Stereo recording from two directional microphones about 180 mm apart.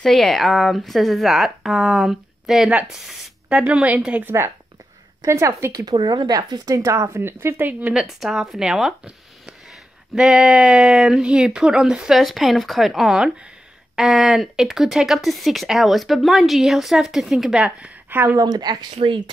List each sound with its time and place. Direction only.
0.0 s speech: centre (ahead or behind)
18.4 s speech: 25° right (ahead or behind)